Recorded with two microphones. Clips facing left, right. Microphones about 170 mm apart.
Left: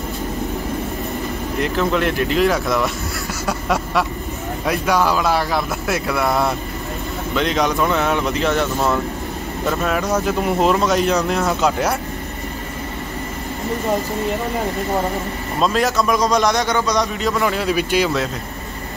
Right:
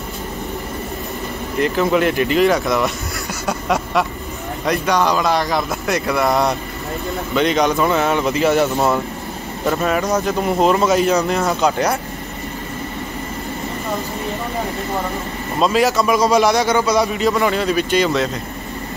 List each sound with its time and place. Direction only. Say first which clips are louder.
1.6 s a man's voice: right 3 dB; 5° right (ahead or behind)
3.4 s a sound: right 1 dB; centre (ahead or behind)
4.6 s a man's voice: right 1 dB; 5° left (ahead or behind)
8.6 s speech: right 2 dB; 20° right (ahead or behind)
9.7 s a man's voice: right 2 dB; centre (ahead or behind)
15.6 s a man's voice: right 2 dB; centre (ahead or behind)